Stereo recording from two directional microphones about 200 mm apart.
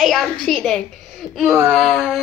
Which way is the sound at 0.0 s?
Centre (ahead or behind).